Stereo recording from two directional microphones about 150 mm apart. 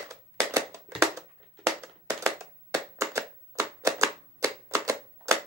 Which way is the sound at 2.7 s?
20° right (ahead or behind).